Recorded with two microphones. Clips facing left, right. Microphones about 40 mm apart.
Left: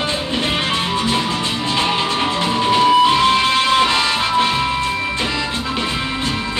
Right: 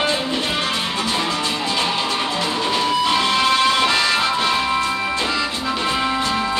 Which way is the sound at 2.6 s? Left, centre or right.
Left.